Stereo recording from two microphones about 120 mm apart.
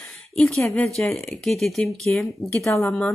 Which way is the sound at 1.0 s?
10° left (ahead or behind).